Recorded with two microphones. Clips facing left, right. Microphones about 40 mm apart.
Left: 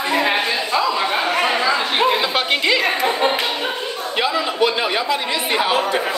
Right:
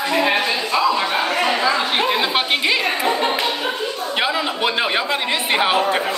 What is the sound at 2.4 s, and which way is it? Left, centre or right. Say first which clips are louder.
Speech: left 1 dB; centre.